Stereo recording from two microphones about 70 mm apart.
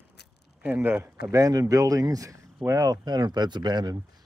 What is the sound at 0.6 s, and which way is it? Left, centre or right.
Speech, right.